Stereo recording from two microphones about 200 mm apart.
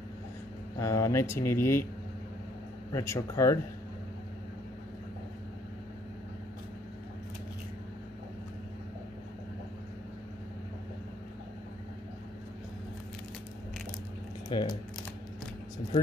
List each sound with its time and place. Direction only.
0.7 s speech: 15° left (ahead or behind)
2.9 s speech: 15° left (ahead or behind)
14.5 s speech: 20° left (ahead or behind)